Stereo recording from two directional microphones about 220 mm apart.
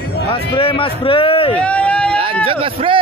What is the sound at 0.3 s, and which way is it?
Speech, 25° left (ahead or behind).